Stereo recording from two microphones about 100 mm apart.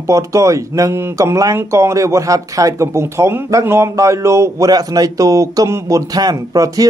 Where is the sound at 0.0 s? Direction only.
30° right (ahead or behind).